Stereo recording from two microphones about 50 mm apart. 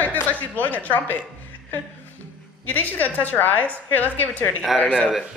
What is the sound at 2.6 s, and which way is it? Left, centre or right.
A woman's voice, left.